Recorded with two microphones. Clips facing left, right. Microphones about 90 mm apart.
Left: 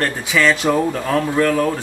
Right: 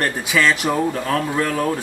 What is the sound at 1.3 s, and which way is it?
Speech, 10° right (ahead or behind).